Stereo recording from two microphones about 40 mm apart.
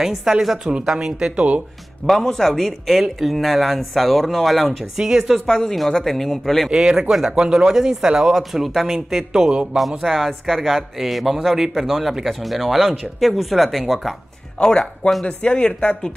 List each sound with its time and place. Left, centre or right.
0.0 s speech: centre
0.7 s speech: right
2.0 s a man's voice: centre
2.9 s speech: centre
4.9 s speech: centre
5.5 s a man's voice: centre
6.7 s speech: centre
9.8 s speech: centre
14.6 s speech: centre